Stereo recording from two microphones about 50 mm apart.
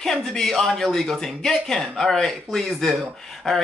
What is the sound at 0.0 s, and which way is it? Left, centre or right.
Speech, centre.